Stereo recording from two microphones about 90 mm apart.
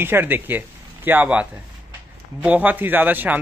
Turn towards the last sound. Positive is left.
turn(degrees=-20)  # may be behind; listen again after turning